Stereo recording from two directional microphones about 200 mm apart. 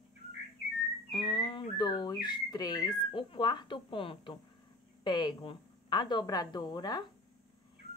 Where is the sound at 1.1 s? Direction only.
25° left (ahead or behind).